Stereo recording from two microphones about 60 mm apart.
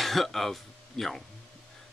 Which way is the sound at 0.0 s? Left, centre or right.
Centre.